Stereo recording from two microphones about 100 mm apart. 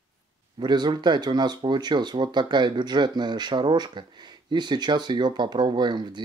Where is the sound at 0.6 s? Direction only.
45° right (ahead or behind).